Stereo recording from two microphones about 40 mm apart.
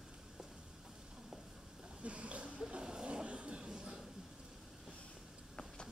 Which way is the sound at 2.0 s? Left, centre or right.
Right.